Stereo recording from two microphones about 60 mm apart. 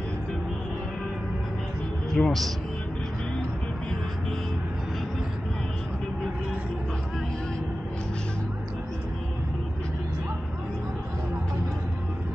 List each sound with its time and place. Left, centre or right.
2.2 s a man's voice: centre